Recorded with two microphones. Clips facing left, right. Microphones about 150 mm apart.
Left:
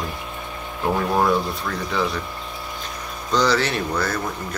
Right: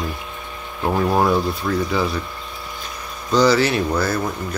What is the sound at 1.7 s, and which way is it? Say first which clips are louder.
Speech: right 7 dB; 15° right (ahead or behind).